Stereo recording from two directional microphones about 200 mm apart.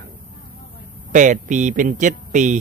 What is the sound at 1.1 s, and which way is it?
Speech, 40° right (ahead or behind).